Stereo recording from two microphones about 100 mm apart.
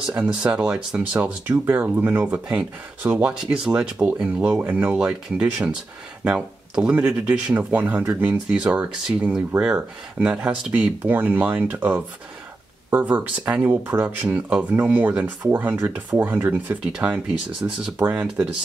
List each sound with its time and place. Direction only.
0.1 s speech: 10° right (ahead or behind)